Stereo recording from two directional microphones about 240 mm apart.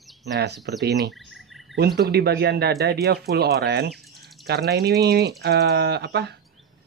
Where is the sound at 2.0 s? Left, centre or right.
Right.